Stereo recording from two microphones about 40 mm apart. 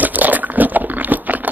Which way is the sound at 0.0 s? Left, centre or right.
Right.